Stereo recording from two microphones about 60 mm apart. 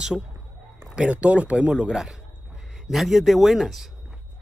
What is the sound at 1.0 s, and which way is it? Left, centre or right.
A man's voice, right.